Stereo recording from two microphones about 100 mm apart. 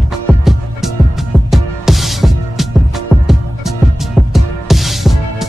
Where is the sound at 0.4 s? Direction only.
5° right (ahead or behind).